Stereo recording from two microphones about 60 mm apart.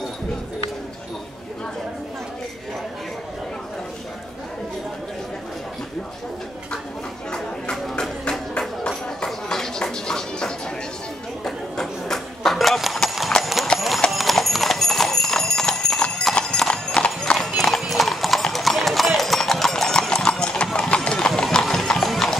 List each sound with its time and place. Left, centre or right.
7.2 s a sound: centre
13.7 s clip-clop: centre
17.6 s clip-clop: centre
20.9 s horse: centre
21.4 s clip-clop: centre